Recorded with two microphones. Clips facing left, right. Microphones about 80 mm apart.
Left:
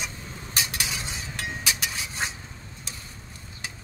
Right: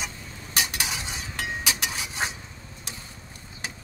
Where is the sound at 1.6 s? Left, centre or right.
Right.